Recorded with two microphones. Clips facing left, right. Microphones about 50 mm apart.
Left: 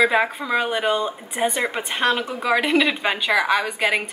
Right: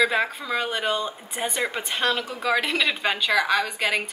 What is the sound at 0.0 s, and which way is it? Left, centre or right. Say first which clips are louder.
A woman's voice: left 4 dB; centre.